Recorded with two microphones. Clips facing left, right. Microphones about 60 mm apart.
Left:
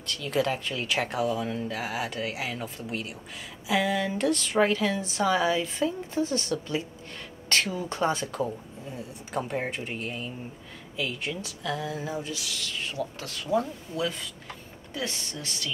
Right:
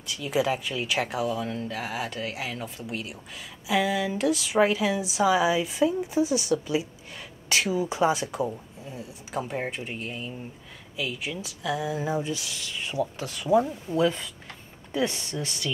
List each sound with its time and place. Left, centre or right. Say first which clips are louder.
0.0 s a woman's voice: right 1 dB; centre